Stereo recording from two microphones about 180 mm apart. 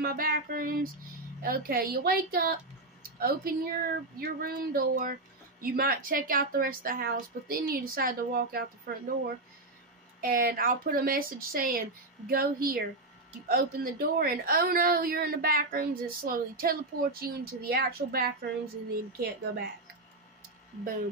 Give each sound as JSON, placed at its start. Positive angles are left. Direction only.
{"t": 0.0, "sound": "a woman's voice", "side_deg": -55}